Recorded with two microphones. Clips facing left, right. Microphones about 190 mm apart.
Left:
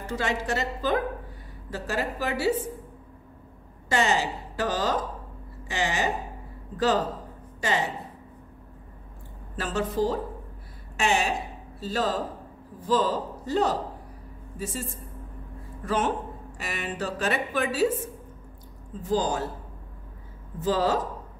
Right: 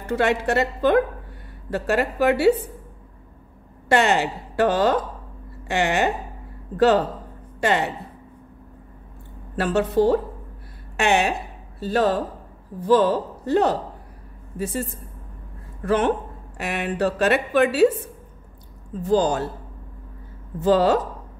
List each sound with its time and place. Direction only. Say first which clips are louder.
0.0 s a woman's voice: right 8 dB; 60° right (ahead or behind)
3.9 s a woman's voice: right 6 dB; 60° right (ahead or behind)
7.6 s a woman's voice: right 6 dB; 60° right (ahead or behind)
9.6 s a woman's voice: right 7 dB; 65° right (ahead or behind)
19.0 s a woman's voice: right 6 dB; 65° right (ahead or behind)
20.6 s a woman's voice: right 7 dB; 65° right (ahead or behind)